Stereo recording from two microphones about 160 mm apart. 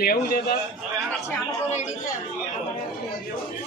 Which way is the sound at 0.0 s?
70° left (ahead or behind).